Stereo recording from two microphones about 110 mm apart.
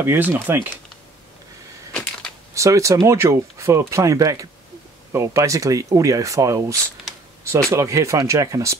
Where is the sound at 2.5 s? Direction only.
30° right (ahead or behind).